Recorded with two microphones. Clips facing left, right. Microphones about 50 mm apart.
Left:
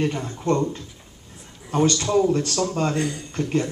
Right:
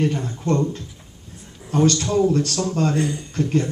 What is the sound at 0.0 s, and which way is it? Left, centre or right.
Speech, centre.